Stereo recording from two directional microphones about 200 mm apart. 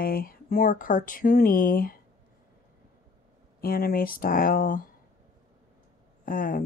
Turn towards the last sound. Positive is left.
turn(degrees=45)  # may be behind; listen again after turning